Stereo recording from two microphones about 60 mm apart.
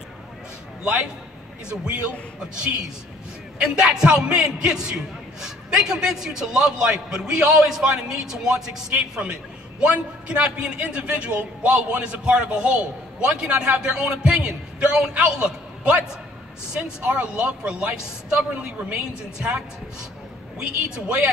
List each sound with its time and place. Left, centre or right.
1.7 s a woman's voice: centre
3.5 s a man's voice: centre
17.0 s a man's voice: centre